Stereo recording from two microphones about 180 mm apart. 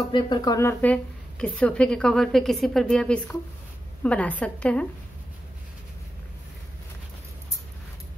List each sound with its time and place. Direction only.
0.1 s a woman's voice: 25° left (ahead or behind); by 4.8 s 5° left (ahead or behind)